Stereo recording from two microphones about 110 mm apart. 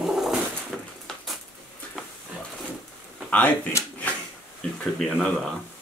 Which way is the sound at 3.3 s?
15° left (ahead or behind).